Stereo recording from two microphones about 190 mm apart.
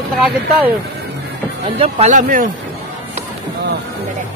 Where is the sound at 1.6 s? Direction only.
30° right (ahead or behind).